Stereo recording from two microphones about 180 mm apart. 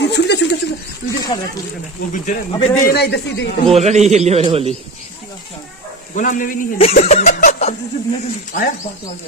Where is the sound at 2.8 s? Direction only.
60° left (ahead or behind).